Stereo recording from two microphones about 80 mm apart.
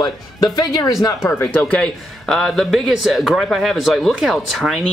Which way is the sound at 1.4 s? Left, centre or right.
Centre.